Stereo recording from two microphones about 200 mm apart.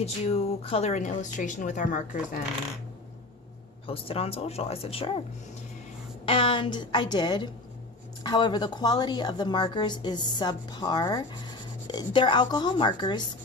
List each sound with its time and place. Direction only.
0.0 s a woman's voice: 30° left (ahead or behind)
3.8 s a woman's voice: 30° left (ahead or behind)
6.2 s a woman's voice: 25° left (ahead or behind)